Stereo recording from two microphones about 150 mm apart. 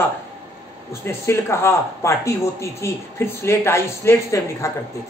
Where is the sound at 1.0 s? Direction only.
15° left (ahead or behind).